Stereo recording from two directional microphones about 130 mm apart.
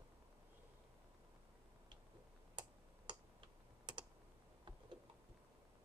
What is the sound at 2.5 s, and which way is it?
Tick-tock, 40° right (ahead or behind).